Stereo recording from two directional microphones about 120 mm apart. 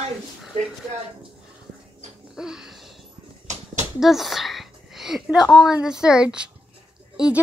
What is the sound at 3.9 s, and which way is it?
A woman's voice, centre (ahead or behind).